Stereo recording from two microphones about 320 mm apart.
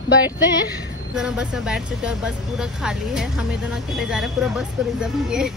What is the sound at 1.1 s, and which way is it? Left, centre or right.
Speech, centre.